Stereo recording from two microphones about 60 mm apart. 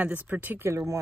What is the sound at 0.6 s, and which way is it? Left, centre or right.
Speech, right.